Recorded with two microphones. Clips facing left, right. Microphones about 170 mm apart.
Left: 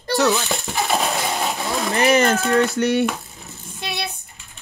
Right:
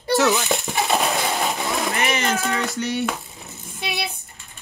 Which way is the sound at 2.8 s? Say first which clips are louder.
Left 6 dB; 60° left (ahead or behind).